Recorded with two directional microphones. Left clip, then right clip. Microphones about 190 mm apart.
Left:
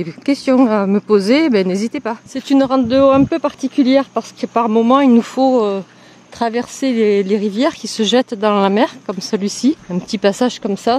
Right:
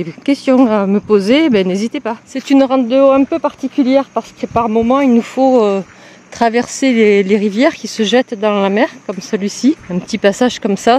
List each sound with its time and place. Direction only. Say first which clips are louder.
0.0 s a woman's voice: right 2 dB; centre (ahead or behind)
2.8 s speech: right 2 dB; 5° left (ahead or behind)
5.5 s a woman's voice: right 4 dB; 15° right (ahead or behind)